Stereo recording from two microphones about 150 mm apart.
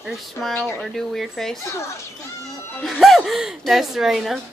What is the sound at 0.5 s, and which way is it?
Speech, 15° left (ahead or behind).